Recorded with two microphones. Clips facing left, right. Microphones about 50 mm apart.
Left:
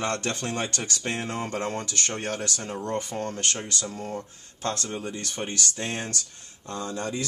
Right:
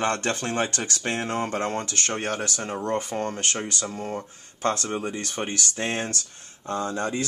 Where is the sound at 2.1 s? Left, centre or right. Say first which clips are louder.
Right 5 dB; right.